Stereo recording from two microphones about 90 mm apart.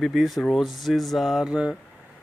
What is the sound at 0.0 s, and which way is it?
Speech, centre (ahead or behind).